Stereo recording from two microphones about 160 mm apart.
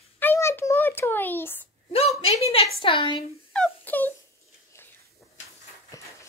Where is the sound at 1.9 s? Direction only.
40° left (ahead or behind).